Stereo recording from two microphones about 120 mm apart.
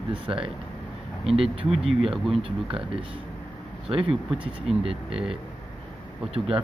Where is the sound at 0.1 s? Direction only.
45° right (ahead or behind).